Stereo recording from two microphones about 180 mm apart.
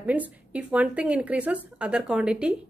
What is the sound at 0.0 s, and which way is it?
A woman's voice, 10° right (ahead or behind).